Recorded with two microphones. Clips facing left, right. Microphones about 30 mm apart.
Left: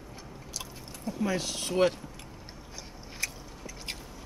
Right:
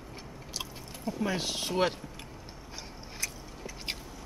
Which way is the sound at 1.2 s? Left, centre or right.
Right.